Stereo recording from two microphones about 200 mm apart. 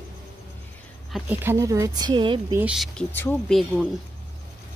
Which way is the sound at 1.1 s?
10° right (ahead or behind).